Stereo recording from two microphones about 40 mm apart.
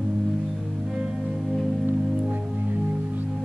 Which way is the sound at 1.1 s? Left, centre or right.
Centre.